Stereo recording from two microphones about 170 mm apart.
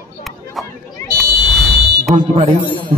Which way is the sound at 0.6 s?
Centre (ahead or behind).